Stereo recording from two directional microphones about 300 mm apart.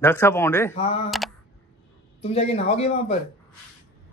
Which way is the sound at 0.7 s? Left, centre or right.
Centre.